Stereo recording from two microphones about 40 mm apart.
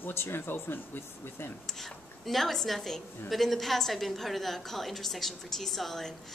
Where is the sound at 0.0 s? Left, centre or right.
Left.